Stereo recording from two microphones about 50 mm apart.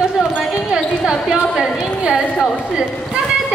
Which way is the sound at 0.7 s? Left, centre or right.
Centre.